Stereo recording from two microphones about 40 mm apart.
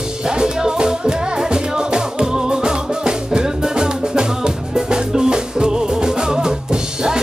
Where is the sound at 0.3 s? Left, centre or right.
Centre.